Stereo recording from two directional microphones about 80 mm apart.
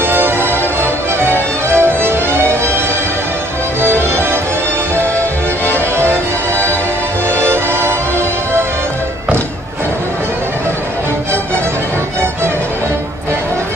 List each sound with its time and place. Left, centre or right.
0.0 s music: right
3.8 s music: right
7.3 s music: right